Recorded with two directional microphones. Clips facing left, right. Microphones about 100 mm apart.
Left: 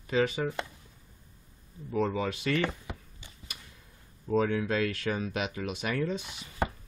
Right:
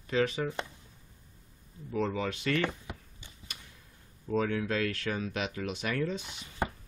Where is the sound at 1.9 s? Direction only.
15° left (ahead or behind).